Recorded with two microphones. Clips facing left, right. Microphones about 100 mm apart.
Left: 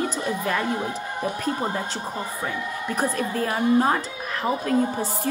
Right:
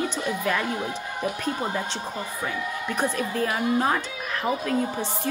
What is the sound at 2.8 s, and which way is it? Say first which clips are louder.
A woman's voice: left 2 dB; 35° left (ahead or behind).